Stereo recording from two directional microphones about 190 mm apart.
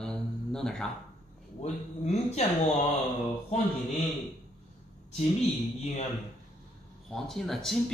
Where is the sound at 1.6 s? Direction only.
35° left (ahead or behind).